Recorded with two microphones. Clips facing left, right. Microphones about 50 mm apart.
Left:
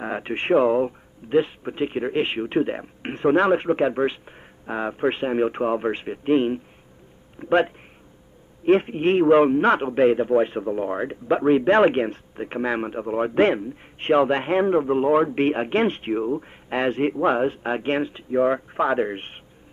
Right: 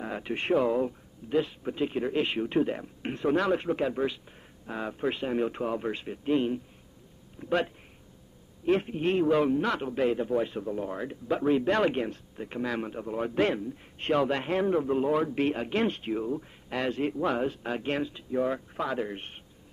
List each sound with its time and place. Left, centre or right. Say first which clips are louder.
0.0 s a man's voice: left 6 dB; left